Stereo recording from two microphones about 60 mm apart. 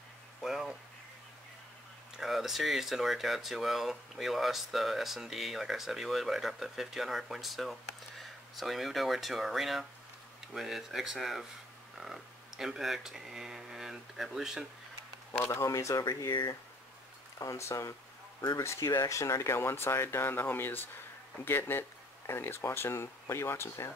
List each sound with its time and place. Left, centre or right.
0.4 s a sound: centre
2.1 s speech: centre
15.5 s speech: left
17.4 s speech: left
18.9 s speech: left